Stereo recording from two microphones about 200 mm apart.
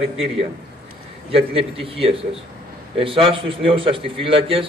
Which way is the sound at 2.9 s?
25° right (ahead or behind).